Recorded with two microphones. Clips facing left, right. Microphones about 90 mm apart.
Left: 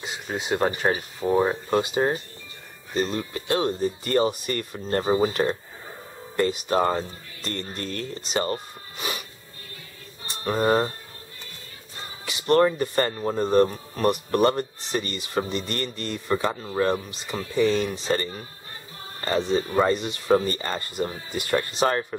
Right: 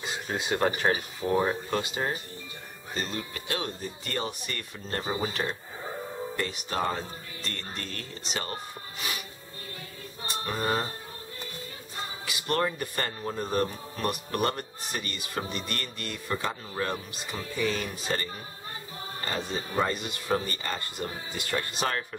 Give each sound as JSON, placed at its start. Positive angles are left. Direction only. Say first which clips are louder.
{"t": 0.0, "sound": "a man's voice", "louder": "left 1 dB", "side_deg": 5}
{"t": 10.4, "sound": "a man's voice", "louder": "left 8 dB", "side_deg": 35}
{"t": 12.4, "sound": "a man's voice", "louder": "left 9 dB", "side_deg": 35}
{"t": 19.3, "sound": "a man's voice", "louder": "left 8 dB", "side_deg": 35}